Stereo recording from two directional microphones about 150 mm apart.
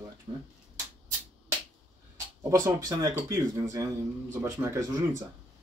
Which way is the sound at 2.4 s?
20° right (ahead or behind).